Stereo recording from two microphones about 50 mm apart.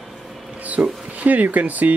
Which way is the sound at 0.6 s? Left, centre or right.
Right.